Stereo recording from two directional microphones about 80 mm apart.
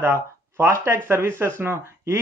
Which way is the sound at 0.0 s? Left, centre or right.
Right.